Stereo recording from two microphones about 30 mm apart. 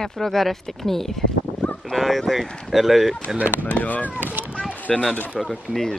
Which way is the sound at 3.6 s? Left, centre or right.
Left.